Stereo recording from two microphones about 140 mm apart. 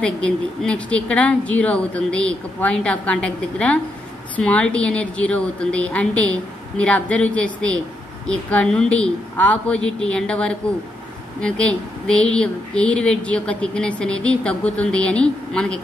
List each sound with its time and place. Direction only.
0.0 s speech: 5° left (ahead or behind)